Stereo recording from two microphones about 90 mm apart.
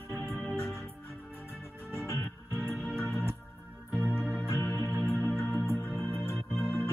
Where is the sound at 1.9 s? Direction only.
30° left (ahead or behind).